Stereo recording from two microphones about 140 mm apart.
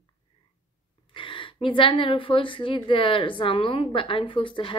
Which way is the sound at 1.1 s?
35° left (ahead or behind).